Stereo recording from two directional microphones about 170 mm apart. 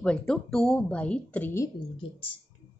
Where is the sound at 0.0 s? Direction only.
5° left (ahead or behind).